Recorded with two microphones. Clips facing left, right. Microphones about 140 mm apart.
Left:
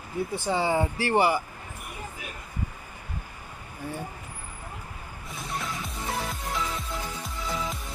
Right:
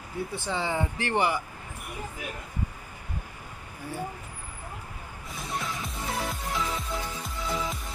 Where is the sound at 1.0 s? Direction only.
10° left (ahead or behind).